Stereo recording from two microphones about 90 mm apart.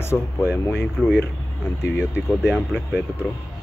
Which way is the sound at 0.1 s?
15° left (ahead or behind).